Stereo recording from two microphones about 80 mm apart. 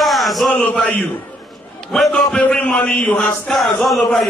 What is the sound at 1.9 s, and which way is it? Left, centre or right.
Chant, centre.